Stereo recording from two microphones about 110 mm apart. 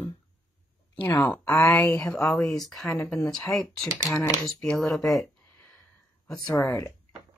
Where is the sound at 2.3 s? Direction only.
5° left (ahead or behind).